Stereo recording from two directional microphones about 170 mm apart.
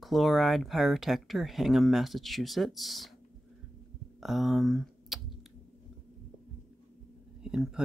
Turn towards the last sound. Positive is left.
turn(degrees=-5)  # may be behind; listen again after turning